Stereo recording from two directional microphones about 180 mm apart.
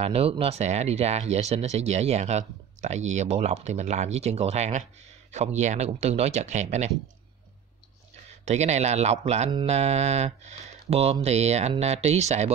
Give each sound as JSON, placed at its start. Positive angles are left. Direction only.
{"t": 0.0, "sound": "speech", "side_deg": -30}
{"t": 8.5, "sound": "speech", "side_deg": -40}